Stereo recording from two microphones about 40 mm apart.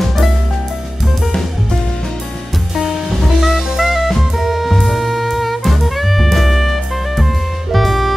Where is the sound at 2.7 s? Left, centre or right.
Centre.